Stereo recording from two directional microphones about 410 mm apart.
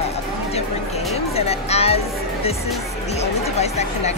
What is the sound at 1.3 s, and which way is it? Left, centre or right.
Speech, centre.